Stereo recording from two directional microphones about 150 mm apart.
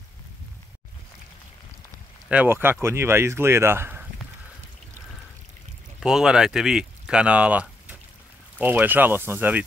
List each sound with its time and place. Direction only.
2.2 s speech: 10° right (ahead or behind)
5.9 s speech: 5° right (ahead or behind)